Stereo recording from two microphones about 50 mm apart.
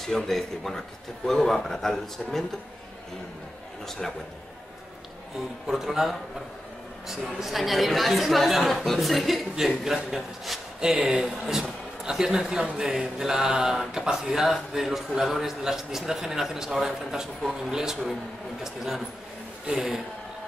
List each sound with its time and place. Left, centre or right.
0.0 s a man's voice: centre
3.8 s a man's voice: centre
5.7 s speech: centre
11.0 s speech: centre
11.2 s speech: centre